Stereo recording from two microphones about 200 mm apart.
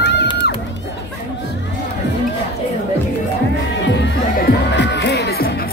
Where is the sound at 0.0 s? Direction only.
60° left (ahead or behind).